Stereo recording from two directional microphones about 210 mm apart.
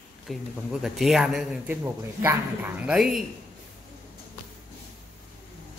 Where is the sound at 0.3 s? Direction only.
Centre (ahead or behind).